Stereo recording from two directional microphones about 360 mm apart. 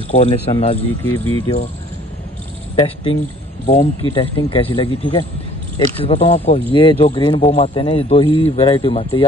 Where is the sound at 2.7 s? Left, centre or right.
Centre.